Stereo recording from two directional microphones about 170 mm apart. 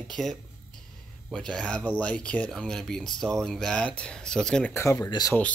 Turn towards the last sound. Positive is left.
turn(degrees=20)  # may be behind; listen again after turning